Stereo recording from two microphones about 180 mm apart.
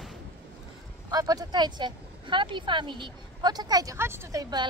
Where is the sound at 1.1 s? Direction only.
20° right (ahead or behind).